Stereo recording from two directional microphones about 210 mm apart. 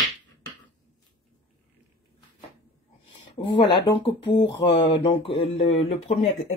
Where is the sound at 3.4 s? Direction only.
25° left (ahead or behind).